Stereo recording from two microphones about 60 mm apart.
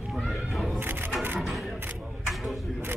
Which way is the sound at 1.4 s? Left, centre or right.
Centre.